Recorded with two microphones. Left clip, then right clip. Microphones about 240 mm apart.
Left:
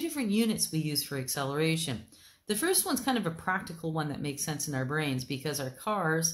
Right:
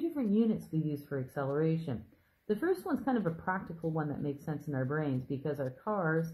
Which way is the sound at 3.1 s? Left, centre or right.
Left.